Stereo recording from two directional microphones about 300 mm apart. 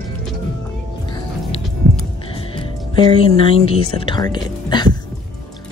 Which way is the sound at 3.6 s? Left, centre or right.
Centre.